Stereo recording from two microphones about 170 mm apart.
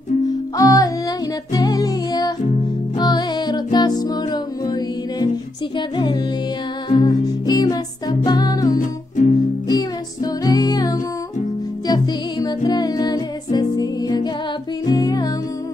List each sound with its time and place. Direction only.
0.3 s music: 20° left (ahead or behind)
8.7 s music: 50° left (ahead or behind)
9.7 s music: 20° left (ahead or behind)